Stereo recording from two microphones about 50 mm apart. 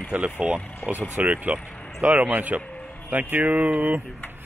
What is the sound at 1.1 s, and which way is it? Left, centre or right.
A man's voice, right.